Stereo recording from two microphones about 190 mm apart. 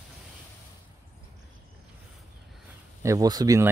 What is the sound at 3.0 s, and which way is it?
Speech, 20° right (ahead or behind).